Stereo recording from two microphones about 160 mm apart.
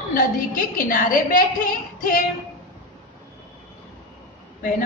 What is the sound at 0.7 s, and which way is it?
Speech, 60° left (ahead or behind).